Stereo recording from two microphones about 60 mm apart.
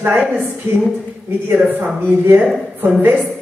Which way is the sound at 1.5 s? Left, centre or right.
Right.